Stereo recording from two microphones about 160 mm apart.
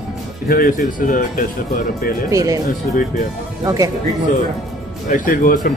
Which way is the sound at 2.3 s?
20° right (ahead or behind).